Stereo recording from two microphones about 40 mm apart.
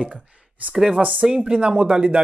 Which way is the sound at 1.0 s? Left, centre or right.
Right.